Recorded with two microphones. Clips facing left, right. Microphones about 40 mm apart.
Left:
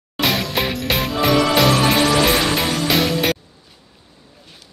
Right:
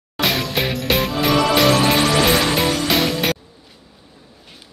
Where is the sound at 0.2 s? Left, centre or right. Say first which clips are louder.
Even; centre.